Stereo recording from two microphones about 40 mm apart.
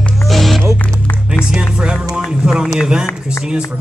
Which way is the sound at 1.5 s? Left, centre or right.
Right.